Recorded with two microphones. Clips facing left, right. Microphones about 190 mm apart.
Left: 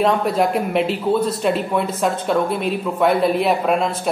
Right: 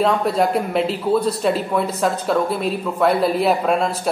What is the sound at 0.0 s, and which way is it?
Speech, centre (ahead or behind).